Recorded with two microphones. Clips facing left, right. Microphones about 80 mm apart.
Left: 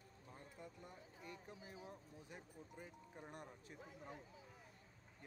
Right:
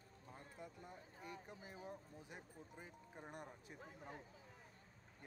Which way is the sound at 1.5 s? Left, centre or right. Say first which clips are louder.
Right 1 dB; right.